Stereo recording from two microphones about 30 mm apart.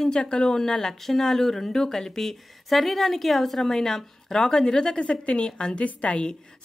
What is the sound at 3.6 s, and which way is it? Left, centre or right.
Speech, centre.